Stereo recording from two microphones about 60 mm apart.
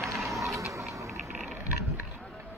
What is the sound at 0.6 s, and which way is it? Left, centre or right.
Music, right.